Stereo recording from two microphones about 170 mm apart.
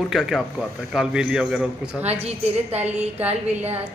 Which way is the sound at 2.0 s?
40° right (ahead or behind).